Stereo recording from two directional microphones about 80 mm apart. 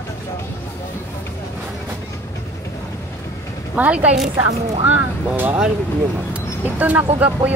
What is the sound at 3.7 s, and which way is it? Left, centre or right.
Speech, centre.